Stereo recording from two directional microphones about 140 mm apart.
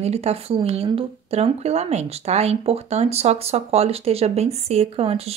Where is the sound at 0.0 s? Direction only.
50° right (ahead or behind).